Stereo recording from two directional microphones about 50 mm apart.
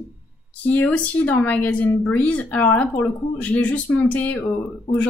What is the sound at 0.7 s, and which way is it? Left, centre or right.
Speech, left.